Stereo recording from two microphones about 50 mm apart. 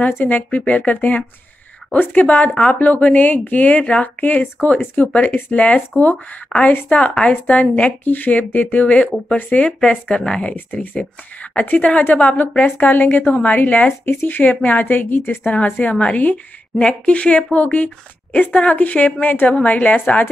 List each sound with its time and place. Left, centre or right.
0.0 s a woman's voice: left
10.5 s a woman's voice: left
12.0 s a woman's voice: left
14.0 s a woman's voice: left